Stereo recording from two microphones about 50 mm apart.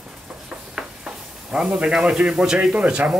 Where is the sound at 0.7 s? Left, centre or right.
Centre.